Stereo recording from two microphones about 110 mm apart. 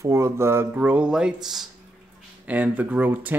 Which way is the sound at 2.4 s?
15° right (ahead or behind).